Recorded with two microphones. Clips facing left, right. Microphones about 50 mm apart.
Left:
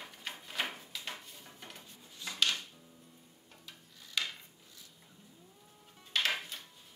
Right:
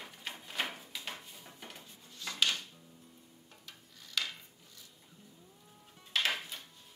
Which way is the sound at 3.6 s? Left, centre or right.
Centre.